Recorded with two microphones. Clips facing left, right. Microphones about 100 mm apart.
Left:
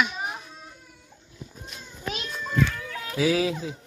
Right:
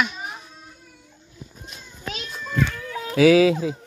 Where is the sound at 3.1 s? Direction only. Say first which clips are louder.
Right 9 dB; 90° right.